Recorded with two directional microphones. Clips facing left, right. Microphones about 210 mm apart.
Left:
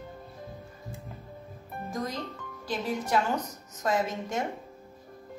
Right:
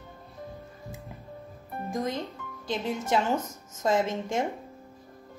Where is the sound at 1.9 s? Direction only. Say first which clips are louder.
Right 3 dB; 20° right (ahead or behind).